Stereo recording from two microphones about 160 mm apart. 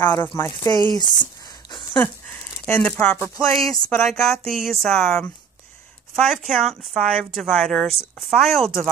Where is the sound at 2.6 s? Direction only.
10° left (ahead or behind).